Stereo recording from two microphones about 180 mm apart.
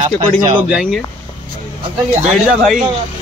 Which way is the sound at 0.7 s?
5° right (ahead or behind).